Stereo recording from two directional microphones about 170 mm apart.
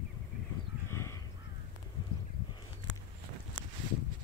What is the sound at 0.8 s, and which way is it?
Crow, 15° left (ahead or behind).